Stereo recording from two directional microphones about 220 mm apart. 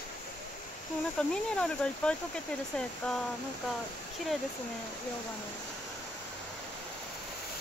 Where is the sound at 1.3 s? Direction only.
5° left (ahead or behind).